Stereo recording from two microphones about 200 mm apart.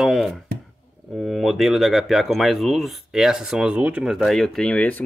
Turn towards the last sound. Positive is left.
turn(degrees=5)  # may be behind; listen again after turning